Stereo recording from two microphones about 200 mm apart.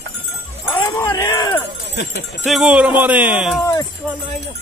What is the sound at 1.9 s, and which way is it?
Speech, 60° left (ahead or behind).